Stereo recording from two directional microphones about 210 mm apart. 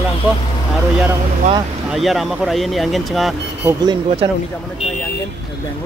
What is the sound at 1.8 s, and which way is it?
Speech, centre (ahead or behind).